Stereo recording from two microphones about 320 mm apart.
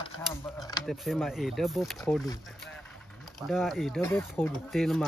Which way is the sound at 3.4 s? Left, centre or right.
Centre.